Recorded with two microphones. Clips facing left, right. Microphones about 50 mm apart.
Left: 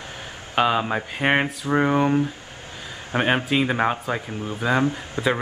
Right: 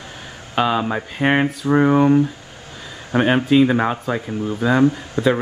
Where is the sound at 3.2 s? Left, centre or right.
Centre.